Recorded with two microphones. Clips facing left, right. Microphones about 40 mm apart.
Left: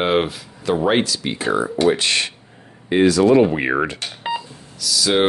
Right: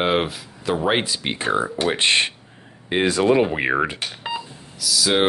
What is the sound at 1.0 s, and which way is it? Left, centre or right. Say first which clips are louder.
Speech: left 1 dB; right.